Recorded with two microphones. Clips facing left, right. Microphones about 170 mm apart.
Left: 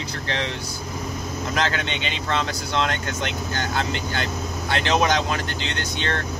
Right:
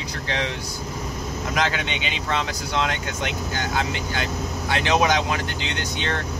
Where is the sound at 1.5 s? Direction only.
10° right (ahead or behind).